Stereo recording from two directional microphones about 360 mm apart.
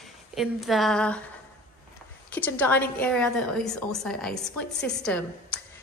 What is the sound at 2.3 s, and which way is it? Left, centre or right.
A woman's voice, centre.